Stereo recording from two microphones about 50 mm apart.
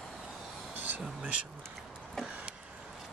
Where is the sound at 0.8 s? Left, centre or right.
Right.